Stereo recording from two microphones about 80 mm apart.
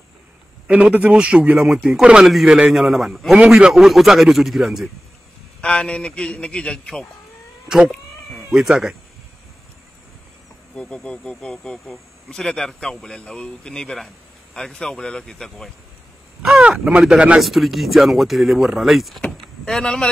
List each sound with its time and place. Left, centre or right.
0.7 s a man's voice: centre
5.6 s speech: centre
7.6 s speech: centre
7.9 s cat: centre
8.5 s a man's voice: centre
10.8 s speech: centre
16.4 s speech: centre